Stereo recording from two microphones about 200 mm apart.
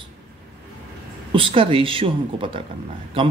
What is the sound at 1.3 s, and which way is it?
Speech, 25° right (ahead or behind).